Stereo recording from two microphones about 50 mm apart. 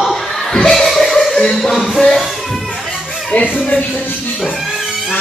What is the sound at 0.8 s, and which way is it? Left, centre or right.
Music, centre.